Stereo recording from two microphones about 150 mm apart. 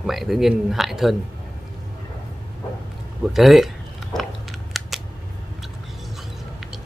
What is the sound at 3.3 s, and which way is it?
Speech, centre (ahead or behind).